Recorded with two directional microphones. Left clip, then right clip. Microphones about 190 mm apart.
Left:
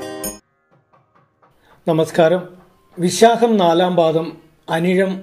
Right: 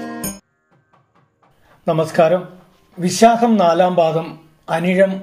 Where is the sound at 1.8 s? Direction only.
40° left (ahead or behind).